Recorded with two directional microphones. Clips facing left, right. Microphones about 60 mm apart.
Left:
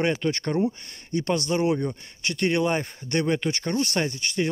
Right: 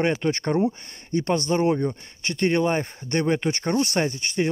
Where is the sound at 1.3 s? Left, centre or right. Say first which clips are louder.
Right 2 dB; centre.